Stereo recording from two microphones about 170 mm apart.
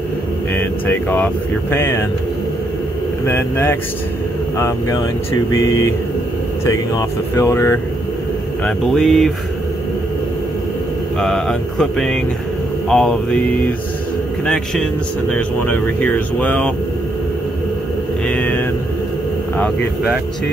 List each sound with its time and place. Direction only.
0.8 s speech: 10° left (ahead or behind)
3.3 s speech: 15° left (ahead or behind)
6.6 s speech: 15° left (ahead or behind)
8.6 s speech: centre (ahead or behind)
11.1 s speech: 5° left (ahead or behind)
14.4 s speech: 5° left (ahead or behind)
18.2 s a sound: 10° left (ahead or behind)